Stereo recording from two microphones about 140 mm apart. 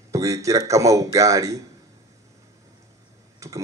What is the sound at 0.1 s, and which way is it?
Speech, 20° right (ahead or behind).